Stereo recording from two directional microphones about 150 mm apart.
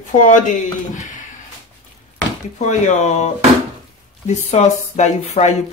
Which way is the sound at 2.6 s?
50° left (ahead or behind).